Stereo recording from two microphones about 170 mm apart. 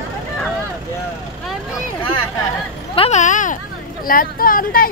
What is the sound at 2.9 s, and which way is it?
Speech, 40° left (ahead or behind).